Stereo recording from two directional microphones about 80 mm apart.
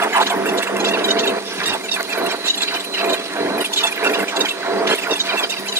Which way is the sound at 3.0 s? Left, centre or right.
Right.